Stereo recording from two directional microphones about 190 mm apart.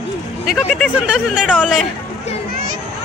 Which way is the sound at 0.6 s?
5° left (ahead or behind).